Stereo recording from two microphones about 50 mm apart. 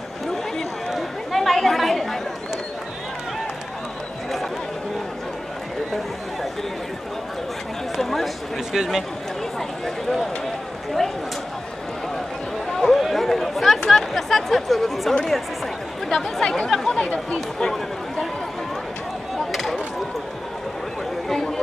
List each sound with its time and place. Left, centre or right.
0.6 s chatter: centre
8.0 s a sound: centre
8.7 s speech: centre
12.7 s chatter: centre
13.8 s speech: centre
16.9 s speech: left
19.3 s a sound: centre
21.3 s chatter: centre